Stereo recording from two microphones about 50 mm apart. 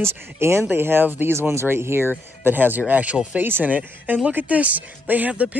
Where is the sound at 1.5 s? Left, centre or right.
Right.